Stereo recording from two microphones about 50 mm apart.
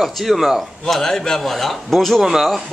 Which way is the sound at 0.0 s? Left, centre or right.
Centre.